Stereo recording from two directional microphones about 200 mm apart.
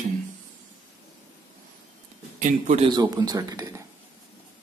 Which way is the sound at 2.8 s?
20° right (ahead or behind).